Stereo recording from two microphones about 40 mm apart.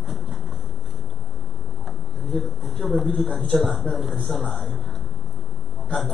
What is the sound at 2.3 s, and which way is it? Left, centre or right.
Speech, centre.